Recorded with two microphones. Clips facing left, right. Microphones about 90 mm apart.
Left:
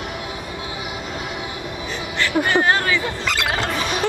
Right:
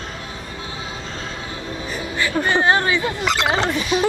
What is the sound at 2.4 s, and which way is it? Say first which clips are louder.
Speech: right 2 dB; 20° right (ahead or behind).